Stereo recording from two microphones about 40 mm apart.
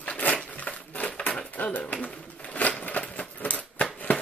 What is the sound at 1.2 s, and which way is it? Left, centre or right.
Dishes, left.